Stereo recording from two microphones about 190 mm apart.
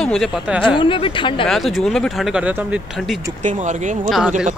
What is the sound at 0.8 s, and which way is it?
Speech, 25° left (ahead or behind).